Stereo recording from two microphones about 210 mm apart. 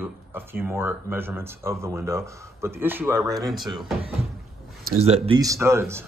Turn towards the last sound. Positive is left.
turn(degrees=-10)  # may be behind; listen again after turning